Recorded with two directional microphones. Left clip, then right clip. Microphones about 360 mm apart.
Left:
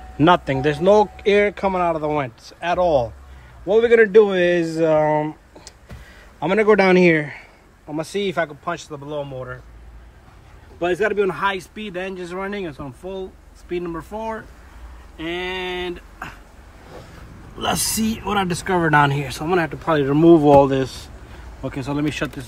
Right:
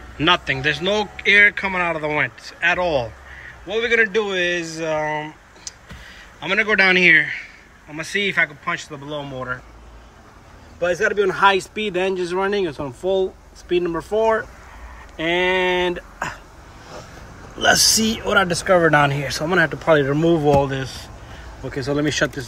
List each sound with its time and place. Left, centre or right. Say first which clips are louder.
0.2 s a man's voice: left 2 dB; centre
10.8 s speech: right 1 dB; centre
18.2 s speech: right 3 dB; centre
20.2 s a man's voice: left 5 dB; centre